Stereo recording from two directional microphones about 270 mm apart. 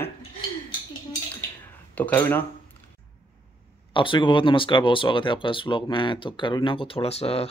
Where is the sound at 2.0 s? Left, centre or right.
Centre.